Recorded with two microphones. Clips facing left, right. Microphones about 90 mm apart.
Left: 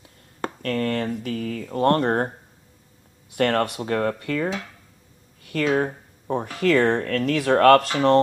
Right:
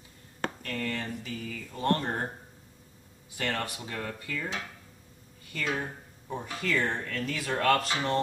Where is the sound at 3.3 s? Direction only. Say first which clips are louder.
Left 12 dB; 65° left (ahead or behind).